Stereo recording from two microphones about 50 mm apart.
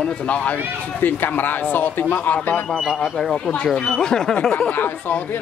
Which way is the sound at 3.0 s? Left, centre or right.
Centre.